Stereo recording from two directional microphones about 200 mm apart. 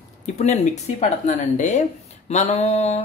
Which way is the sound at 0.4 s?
35° left (ahead or behind).